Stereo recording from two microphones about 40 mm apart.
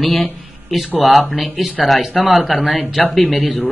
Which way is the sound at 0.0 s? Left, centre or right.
Centre.